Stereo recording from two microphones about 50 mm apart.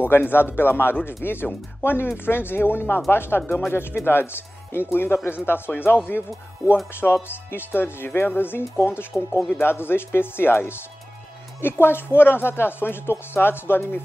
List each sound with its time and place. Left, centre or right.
0.0 s speech: left
7.0 s speech: left